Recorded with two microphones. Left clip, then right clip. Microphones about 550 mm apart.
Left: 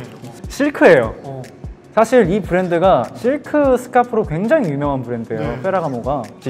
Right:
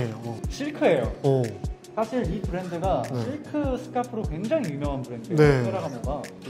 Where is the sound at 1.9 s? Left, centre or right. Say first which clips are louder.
Left 15 dB; left.